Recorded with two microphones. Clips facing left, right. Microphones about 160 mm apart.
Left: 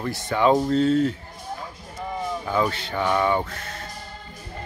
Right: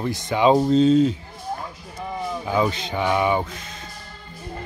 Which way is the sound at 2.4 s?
15° right (ahead or behind).